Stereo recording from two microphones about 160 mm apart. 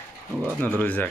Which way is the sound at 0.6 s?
10° left (ahead or behind).